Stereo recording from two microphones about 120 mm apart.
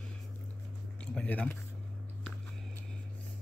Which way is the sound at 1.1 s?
10° left (ahead or behind).